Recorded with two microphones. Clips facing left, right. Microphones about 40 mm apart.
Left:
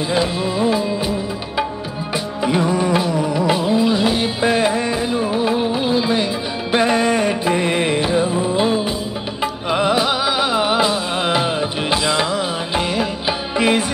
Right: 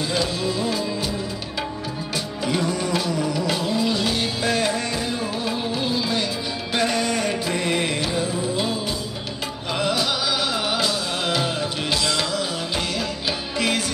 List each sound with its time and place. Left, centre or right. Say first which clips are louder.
0.1 s music: left 6 dB; left
2.4 s music: left 6 dB; left